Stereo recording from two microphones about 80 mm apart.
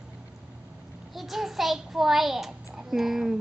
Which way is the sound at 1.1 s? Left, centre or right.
Centre.